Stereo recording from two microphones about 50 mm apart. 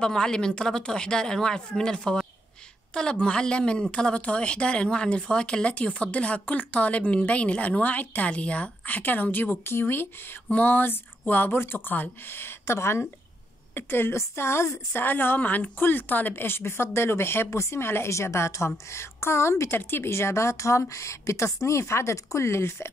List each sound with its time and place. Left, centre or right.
0.0 s speech: centre; by 10.0 s left
10.5 s speech: left
12.7 s a woman's voice: left
13.7 s a woman's voice: left
14.1 s a woman's voice: left
14.9 s a woman's voice: left
18.1 s a woman's voice: left
19.7 s a woman's voice: left